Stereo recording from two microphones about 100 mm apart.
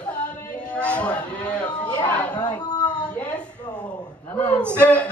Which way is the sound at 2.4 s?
40° left (ahead or behind).